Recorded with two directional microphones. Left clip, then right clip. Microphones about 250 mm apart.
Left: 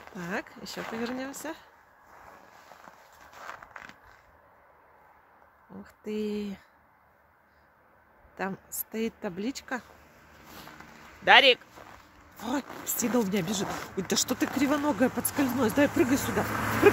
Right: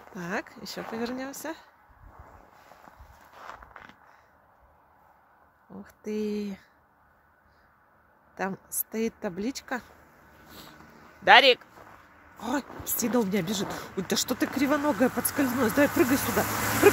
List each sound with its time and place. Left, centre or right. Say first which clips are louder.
0.1 s speech: right 2 dB; centre
3.3 s a sound: left 1 dB; centre
5.8 s speech: right 1 dB; centre
8.4 s speech: right 2 dB; centre
11.2 s speech: right 1 dB; centre
16.5 s speech: right 1 dB; right